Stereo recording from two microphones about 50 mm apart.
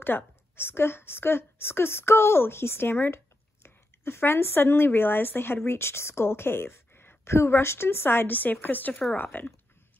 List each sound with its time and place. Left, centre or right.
0.0 s a woman's voice: left
7.3 s a woman's voice: left